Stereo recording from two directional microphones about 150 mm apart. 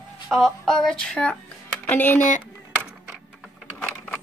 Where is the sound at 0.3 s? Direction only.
5° left (ahead or behind).